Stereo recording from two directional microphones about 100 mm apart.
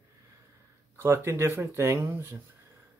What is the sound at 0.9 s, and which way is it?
Speech, 25° right (ahead or behind).